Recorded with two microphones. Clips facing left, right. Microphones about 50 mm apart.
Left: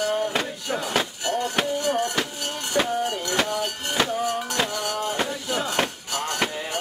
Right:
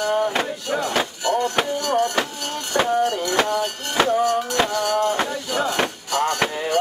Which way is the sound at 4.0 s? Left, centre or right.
Centre.